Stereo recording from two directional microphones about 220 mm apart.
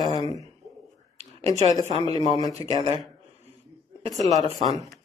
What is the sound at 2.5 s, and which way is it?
Speech, 25° right (ahead or behind).